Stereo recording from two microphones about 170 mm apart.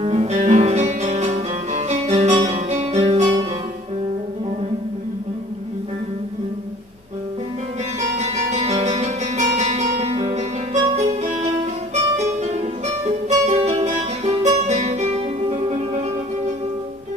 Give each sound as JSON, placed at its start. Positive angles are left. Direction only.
{"t": 0.0, "sound": "music", "side_deg": -40}
{"t": 8.2, "sound": "guitar", "side_deg": -40}
{"t": 8.8, "sound": "music", "side_deg": -40}